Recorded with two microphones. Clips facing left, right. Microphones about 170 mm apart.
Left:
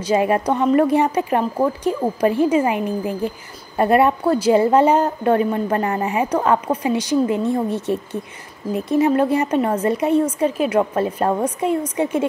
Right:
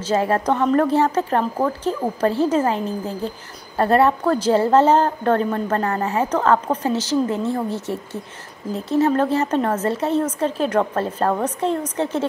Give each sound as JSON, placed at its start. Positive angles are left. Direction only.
{"t": 0.0, "sound": "speech", "side_deg": 15}